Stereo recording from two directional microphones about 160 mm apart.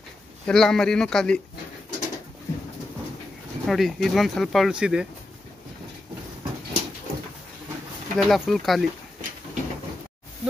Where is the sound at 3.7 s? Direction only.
Centre (ahead or behind).